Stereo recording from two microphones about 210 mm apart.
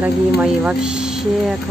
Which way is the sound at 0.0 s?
5° right (ahead or behind).